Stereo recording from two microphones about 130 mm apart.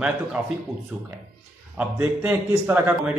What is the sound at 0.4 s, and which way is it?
Speech, 10° right (ahead or behind).